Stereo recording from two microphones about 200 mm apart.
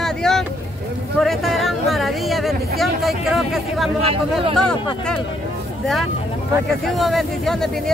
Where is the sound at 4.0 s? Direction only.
30° right (ahead or behind).